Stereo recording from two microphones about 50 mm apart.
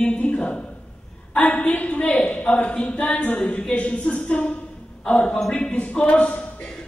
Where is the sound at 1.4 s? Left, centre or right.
Left.